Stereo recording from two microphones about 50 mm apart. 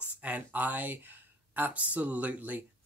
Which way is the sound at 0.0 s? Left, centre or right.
Right.